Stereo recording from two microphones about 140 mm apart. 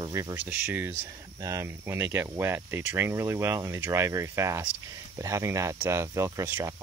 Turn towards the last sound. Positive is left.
turn(degrees=-20)  # may be behind; listen again after turning